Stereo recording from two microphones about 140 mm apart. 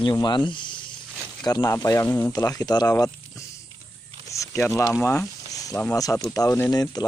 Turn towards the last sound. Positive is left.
turn(degrees=30)  # may be behind; listen again after turning